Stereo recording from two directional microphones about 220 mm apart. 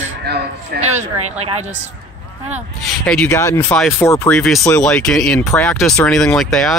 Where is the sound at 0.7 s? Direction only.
30° right (ahead or behind).